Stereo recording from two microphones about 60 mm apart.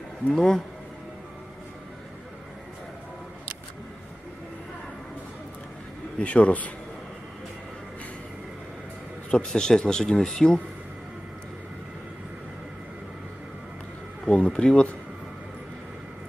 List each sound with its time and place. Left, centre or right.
0.3 s speech: centre
6.1 s speech: left
9.3 s speech: centre
14.2 s speech: centre